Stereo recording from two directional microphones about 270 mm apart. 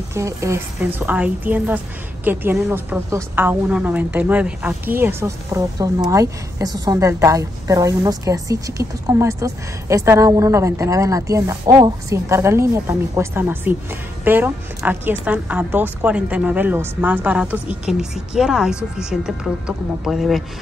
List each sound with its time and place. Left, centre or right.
0.1 s a woman's voice: centre